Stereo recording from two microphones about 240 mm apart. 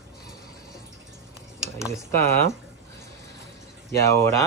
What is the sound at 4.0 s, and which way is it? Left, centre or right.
Speech, centre.